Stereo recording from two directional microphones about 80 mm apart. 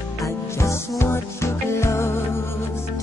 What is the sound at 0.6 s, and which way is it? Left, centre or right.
Music, left.